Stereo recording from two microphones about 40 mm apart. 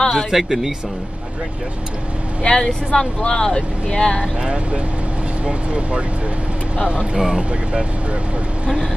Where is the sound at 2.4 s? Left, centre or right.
Left.